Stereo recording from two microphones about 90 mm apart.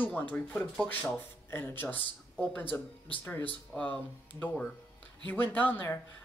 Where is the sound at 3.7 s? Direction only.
15° left (ahead or behind).